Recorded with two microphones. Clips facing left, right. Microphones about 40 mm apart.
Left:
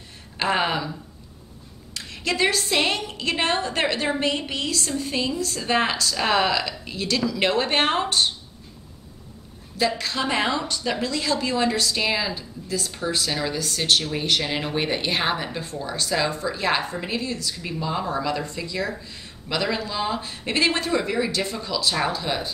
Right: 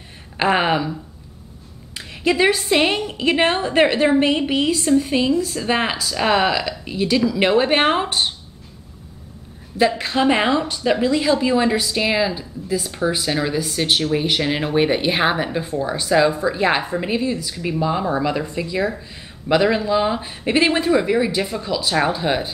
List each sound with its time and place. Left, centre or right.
0.4 s a woman's voice: right
2.0 s a woman's voice: centre
9.8 s a woman's voice: right